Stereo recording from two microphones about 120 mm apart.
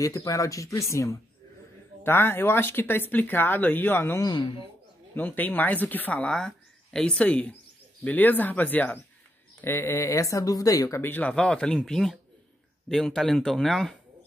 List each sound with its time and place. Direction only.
0.0 s speech: 25° left (ahead or behind)
4.3 s a man's voice: 45° left (ahead or behind)
5.1 s speech: 15° left (ahead or behind)
11.0 s speech: 15° left (ahead or behind)